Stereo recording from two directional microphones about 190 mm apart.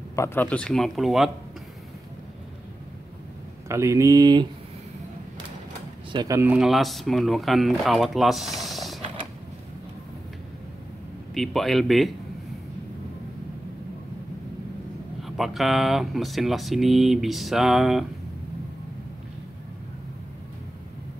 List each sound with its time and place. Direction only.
0.1 s speech: 15° left (ahead or behind)
3.6 s speech: 15° right (ahead or behind)
6.1 s speech: 15° right (ahead or behind); by 9.0 s centre (ahead or behind)
11.3 s speech: centre (ahead or behind)
15.2 s speech: centre (ahead or behind)